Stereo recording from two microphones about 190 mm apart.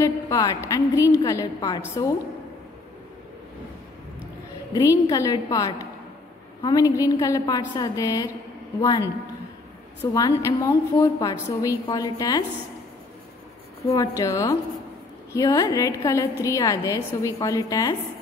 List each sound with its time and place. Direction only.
0.0 s a woman's voice: 20° left (ahead or behind)
4.7 s a woman's voice: 20° left (ahead or behind)
10.1 s a woman's voice: 15° left (ahead or behind)
13.9 s a woman's voice: 15° left (ahead or behind)